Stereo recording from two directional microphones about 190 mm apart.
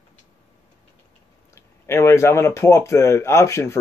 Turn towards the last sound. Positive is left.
turn(degrees=15)  # may be behind; listen again after turning